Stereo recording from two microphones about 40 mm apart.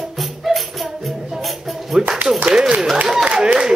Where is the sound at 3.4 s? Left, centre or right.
Right.